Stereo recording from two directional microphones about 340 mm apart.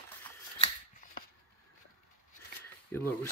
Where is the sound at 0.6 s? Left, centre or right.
Left.